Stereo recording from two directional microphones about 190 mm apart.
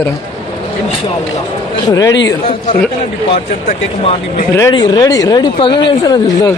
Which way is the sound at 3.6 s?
40° left (ahead or behind).